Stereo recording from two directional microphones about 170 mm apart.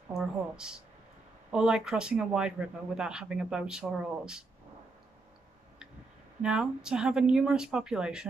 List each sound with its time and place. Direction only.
0.1 s speech: 5° right (ahead or behind)
6.4 s speech: 5° right (ahead or behind)